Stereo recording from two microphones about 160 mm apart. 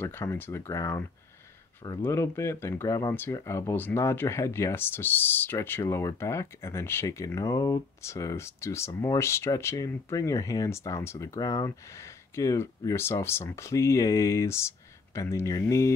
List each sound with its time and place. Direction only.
0.0 s speech: 15° left (ahead or behind)